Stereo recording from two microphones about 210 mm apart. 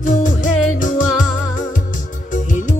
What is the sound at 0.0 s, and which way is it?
Music, 40° left (ahead or behind).